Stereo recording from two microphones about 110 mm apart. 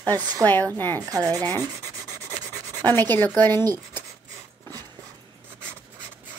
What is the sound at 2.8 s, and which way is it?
Speech, 15° left (ahead or behind).